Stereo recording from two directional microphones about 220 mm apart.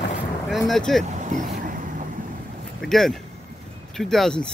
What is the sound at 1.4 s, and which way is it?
Vehicle, 35° right (ahead or behind).